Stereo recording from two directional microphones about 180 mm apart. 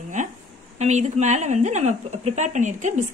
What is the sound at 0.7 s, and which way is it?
A woman's voice, 40° right (ahead or behind).